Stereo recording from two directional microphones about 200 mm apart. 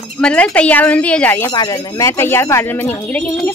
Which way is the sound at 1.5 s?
25° left (ahead or behind).